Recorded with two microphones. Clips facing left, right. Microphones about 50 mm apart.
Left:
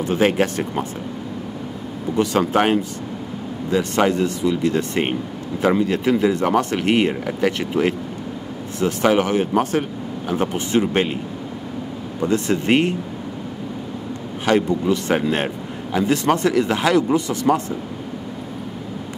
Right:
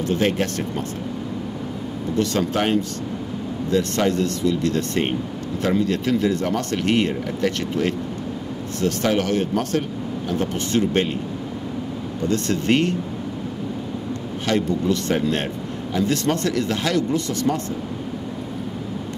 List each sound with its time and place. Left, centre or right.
0.0 s a man's voice: centre
2.1 s a man's voice: centre
4.1 s a man's voice: centre
12.2 s a man's voice: centre
14.4 s a man's voice: centre